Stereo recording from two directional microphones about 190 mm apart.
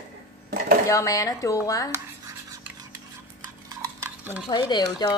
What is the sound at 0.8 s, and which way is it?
Speech, 15° left (ahead or behind).